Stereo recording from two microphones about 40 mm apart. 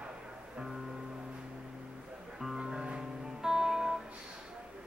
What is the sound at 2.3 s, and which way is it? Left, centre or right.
Music, centre.